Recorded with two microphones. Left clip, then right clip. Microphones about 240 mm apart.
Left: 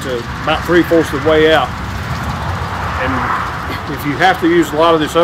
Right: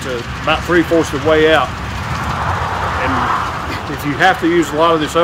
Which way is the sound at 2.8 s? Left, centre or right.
Right.